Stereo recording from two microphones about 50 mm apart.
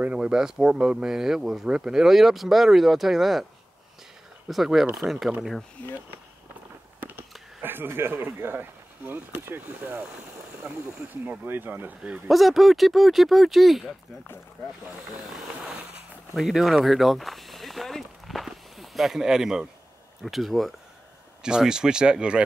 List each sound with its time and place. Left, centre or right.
0.0 s speech: right; by 3.4 s centre
4.5 s speech: centre
7.0 s a sound: right
7.6 s speech: right
10.6 s speech: centre
11.2 s speech: right
12.3 s speech: centre
16.3 s speech: centre
20.2 s speech: centre
21.4 s speech: centre